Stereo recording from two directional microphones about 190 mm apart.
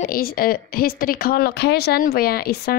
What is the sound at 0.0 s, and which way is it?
A woman's voice, 50° left (ahead or behind).